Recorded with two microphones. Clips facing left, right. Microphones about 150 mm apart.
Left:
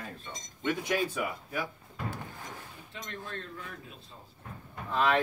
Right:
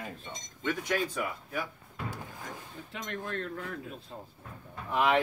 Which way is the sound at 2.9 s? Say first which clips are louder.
Right 5 dB; 75° right (ahead or behind).